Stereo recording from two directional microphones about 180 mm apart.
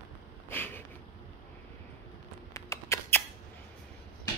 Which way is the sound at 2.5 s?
15° left (ahead or behind).